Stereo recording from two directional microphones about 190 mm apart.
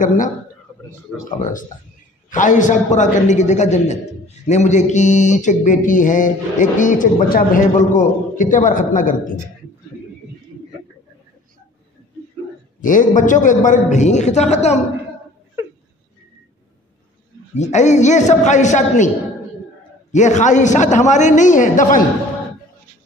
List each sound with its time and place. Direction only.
0.0 s a man's voice: 45° left (ahead or behind)
1.1 s speech: 5° right (ahead or behind)
1.4 s a man's voice: 45° left (ahead or behind)
12.8 s speech: 45° left (ahead or behind)
17.6 s speech: 40° left (ahead or behind)
20.1 s speech: 40° left (ahead or behind)